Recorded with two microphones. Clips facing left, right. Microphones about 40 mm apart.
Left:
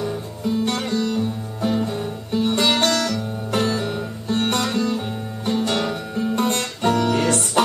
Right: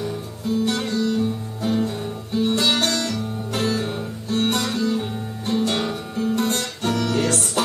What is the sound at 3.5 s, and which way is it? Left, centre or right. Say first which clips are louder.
Music: left 2 dB; centre.